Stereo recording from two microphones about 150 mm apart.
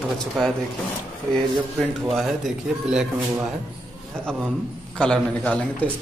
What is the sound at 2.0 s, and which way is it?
A man's voice, centre (ahead or behind).